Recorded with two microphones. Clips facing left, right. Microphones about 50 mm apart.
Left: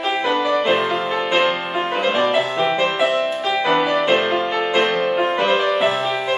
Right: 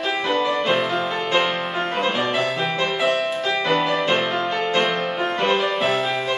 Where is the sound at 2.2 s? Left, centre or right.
Centre.